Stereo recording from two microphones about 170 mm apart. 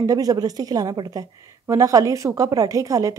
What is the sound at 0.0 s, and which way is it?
A woman's voice, 20° right (ahead or behind).